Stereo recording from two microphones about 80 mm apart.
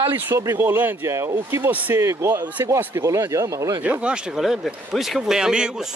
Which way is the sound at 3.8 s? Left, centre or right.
Centre.